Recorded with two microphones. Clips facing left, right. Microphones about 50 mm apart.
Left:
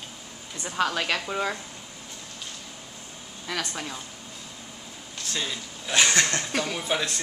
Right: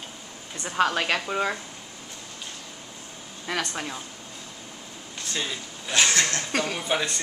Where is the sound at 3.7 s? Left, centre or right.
Centre.